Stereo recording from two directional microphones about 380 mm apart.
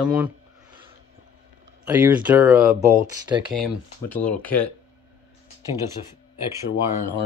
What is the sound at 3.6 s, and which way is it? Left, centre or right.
Speech, centre.